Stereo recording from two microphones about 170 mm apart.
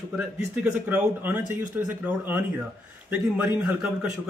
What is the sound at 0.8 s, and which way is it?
A man's voice, 10° right (ahead or behind).